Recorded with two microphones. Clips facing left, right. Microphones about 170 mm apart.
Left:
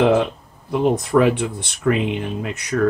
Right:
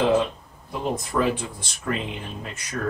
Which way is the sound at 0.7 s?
70° left (ahead or behind).